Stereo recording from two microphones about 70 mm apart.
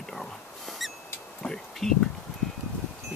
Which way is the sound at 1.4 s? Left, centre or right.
Centre.